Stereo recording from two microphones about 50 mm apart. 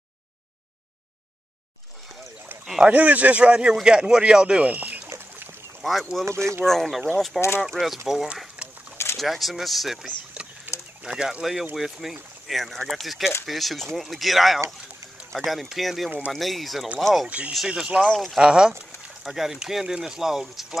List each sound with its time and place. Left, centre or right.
2.6 s boat: centre
2.9 s speech: right
5.8 s speech: centre
6.2 s speech: right
6.6 s speech: centre
7.3 s speech: left
8.1 s speech: centre
10.7 s a sound: right
11.1 s speech: centre
17.6 s speech: centre
18.0 s speech: centre
18.4 s speech: centre